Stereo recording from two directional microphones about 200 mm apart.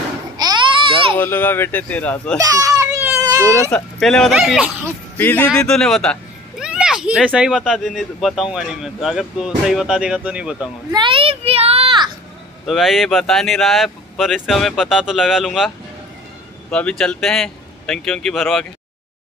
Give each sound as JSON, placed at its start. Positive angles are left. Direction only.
{"t": 0.4, "sound": "a sound", "side_deg": -20}
{"t": 1.1, "sound": "speech", "side_deg": 10}
{"t": 2.3, "sound": "children playing", "side_deg": -15}
{"t": 3.7, "sound": "speech", "side_deg": 0}
{"t": 4.8, "sound": "speech", "side_deg": 10}
{"t": 10.9, "sound": "a sound", "side_deg": -25}
{"t": 12.6, "sound": "speech", "side_deg": 0}
{"t": 16.7, "sound": "speech", "side_deg": 5}